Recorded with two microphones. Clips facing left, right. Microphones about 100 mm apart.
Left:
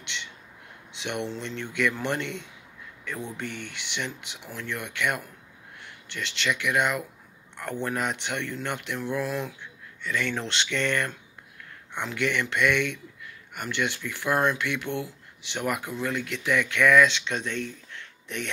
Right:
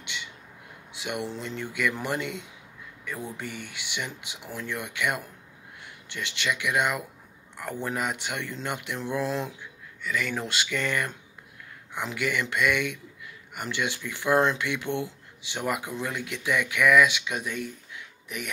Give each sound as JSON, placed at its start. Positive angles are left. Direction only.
{"t": 0.0, "sound": "a sound", "side_deg": -10}
{"t": 0.9, "sound": "speech", "side_deg": -10}
{"t": 9.6, "sound": "speech", "side_deg": -5}